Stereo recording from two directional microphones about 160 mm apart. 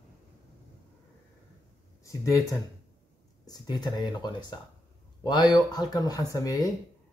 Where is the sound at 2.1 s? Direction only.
20° left (ahead or behind).